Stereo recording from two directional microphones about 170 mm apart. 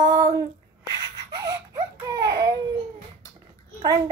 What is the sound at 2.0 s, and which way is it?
Speech, 25° right (ahead or behind).